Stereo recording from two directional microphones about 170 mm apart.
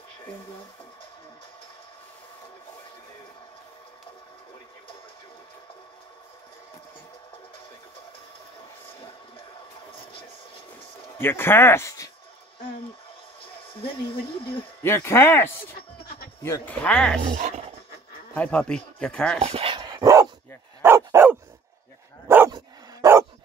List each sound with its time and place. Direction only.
11.1 s speech: 15° left (ahead or behind)
13.7 s speech: 30° left (ahead or behind)
14.8 s speech: 15° left (ahead or behind)
17.2 s speech: 50° right (ahead or behind)
18.3 s speech: 5° left (ahead or behind)
19.4 s dog: 35° right (ahead or behind); by 21.4 s 15° right (ahead or behind)
22.5 s dog: 20° right (ahead or behind)